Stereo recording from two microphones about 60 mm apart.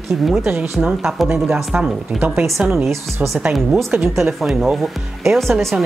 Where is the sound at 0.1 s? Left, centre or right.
Centre.